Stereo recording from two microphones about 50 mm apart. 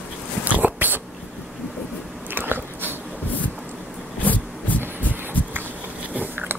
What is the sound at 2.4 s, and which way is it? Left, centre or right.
Biting, right.